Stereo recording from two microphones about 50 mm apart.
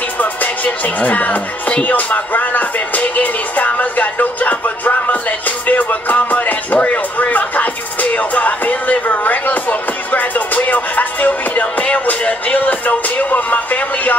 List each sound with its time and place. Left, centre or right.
0.2 s music: left